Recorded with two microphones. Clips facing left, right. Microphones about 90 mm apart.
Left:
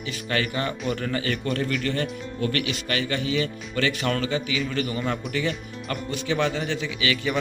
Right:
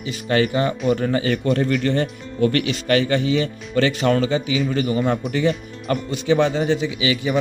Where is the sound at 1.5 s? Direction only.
40° right (ahead or behind).